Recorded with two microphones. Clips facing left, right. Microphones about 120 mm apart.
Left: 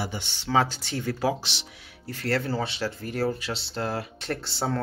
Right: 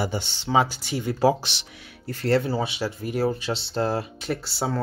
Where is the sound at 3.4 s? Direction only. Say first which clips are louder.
Right 5 dB; 30° right (ahead or behind).